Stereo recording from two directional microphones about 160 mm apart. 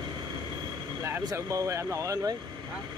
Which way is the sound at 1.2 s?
20° right (ahead or behind).